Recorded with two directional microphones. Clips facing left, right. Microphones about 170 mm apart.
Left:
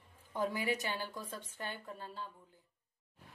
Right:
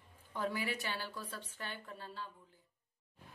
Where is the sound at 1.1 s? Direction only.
45° left (ahead or behind).